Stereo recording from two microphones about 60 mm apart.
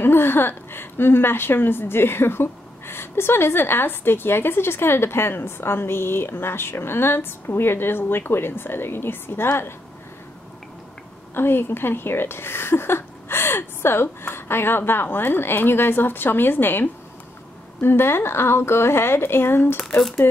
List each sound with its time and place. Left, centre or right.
0.0 s a woman's voice: left
11.3 s a woman's voice: left